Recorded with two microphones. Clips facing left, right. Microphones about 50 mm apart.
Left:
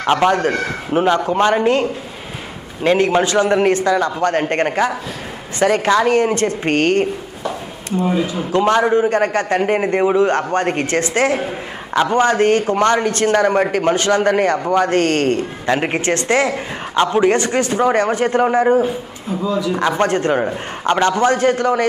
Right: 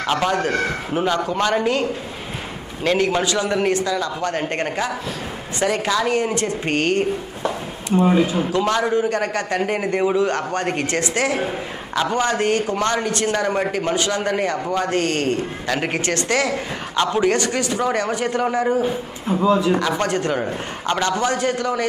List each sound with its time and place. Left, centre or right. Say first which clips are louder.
0.0 s a man's voice: left 5 dB; left
8.5 s a man's voice: left 5 dB; left
15.6 s a man's voice: left 7 dB; left
19.4 s speech: right 3 dB; right
19.8 s a man's voice: left 4 dB; left